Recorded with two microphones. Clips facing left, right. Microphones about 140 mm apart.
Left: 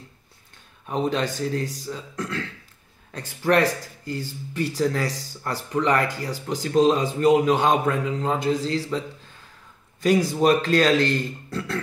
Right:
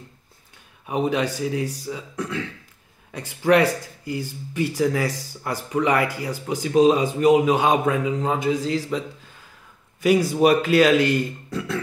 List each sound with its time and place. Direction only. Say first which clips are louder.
0.8 s speech: right 2 dB; 10° right (ahead or behind)
10.0 s speech: right 2 dB; 10° right (ahead or behind)